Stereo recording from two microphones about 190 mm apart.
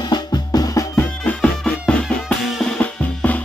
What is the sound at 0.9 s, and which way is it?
Music, 5° left (ahead or behind).